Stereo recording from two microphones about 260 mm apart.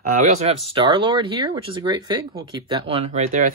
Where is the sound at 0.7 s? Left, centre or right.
Centre.